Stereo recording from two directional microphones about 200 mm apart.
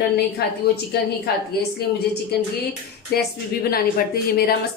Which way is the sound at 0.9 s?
50° left (ahead or behind).